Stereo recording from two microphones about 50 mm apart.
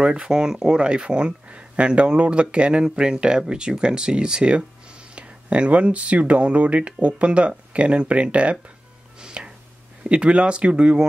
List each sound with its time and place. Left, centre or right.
0.0 s speech: centre
9.2 s chopping: centre
10.0 s speech: right